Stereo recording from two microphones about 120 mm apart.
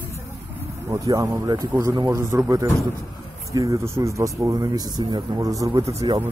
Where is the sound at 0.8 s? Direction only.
25° right (ahead or behind).